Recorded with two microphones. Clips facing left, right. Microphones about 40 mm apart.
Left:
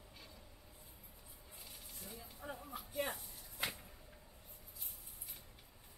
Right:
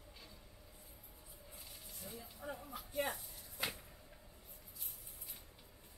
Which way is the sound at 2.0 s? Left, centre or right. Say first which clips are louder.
Right 2 dB; centre.